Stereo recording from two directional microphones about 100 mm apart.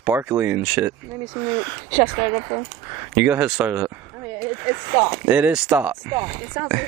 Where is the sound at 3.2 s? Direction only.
15° right (ahead or behind).